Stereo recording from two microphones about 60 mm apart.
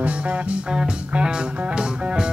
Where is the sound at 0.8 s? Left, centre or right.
Centre.